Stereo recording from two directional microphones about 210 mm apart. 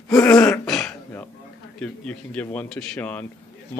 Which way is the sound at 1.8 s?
5° left (ahead or behind).